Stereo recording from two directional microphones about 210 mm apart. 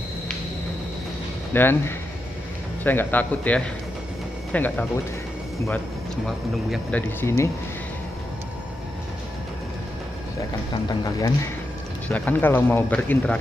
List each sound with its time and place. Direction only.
1.5 s speech: 10° left (ahead or behind)
6.2 s speech: 5° left (ahead or behind)
10.7 s speech: 15° left (ahead or behind)